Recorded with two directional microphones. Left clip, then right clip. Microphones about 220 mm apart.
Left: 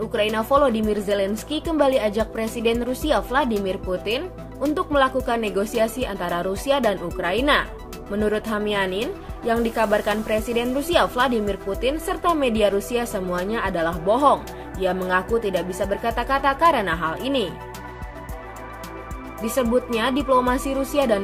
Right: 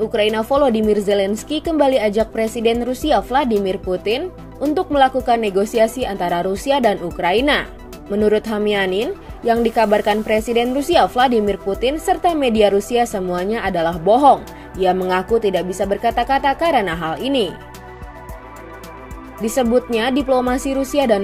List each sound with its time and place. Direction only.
0.1 s speech: 15° right (ahead or behind)
19.4 s speech: 15° right (ahead or behind)